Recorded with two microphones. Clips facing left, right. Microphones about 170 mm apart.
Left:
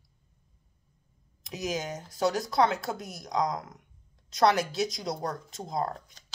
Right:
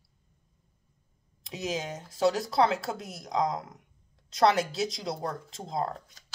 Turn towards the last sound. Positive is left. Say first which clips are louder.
# even
turn(degrees=-30)  # may be behind; listen again after turning